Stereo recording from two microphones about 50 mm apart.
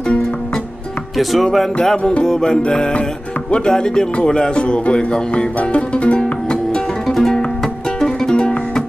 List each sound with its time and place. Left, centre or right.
1.1 s speech: centre
1.8 s music: centre
3.5 s speech: centre
7.1 s music: centre